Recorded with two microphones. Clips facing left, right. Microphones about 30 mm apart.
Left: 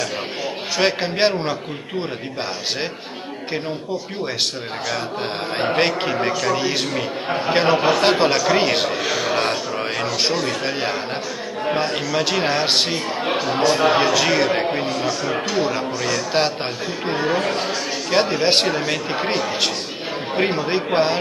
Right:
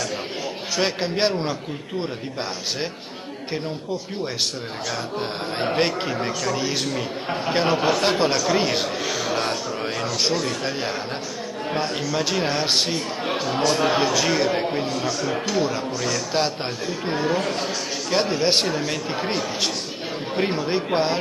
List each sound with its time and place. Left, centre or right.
0.7 s a man's voice: left
5.2 s a man's voice: left